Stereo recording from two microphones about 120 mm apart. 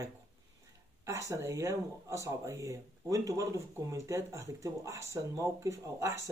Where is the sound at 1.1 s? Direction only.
25° right (ahead or behind).